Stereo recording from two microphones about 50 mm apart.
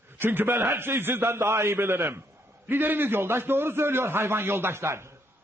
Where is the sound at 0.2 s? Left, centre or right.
Right.